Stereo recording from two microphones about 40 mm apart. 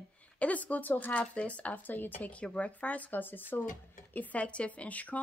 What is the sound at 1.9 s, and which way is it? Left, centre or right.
Speech, left.